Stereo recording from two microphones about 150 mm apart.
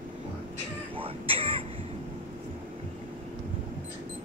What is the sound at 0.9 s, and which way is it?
Throat clearing, 40° right (ahead or behind).